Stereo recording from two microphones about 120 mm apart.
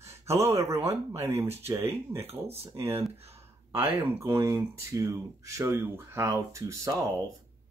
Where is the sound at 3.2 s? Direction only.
60° right (ahead or behind).